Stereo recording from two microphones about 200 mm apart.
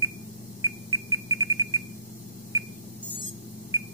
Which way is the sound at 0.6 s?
15° right (ahead or behind).